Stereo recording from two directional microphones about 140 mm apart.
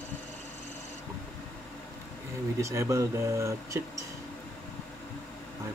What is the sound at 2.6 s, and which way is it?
Speech, 20° right (ahead or behind).